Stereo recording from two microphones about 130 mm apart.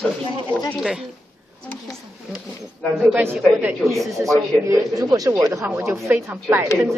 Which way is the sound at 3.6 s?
Centre (ahead or behind).